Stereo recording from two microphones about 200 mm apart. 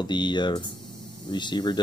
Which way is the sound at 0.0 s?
20° left (ahead or behind).